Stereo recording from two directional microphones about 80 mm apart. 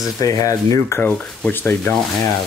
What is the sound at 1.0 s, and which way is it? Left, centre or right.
Speech, centre.